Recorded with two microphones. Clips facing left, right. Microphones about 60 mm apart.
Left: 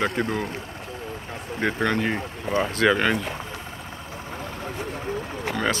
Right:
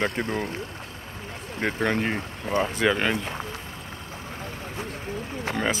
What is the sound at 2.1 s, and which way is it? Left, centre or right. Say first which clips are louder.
Speech: left 1 dB; centre.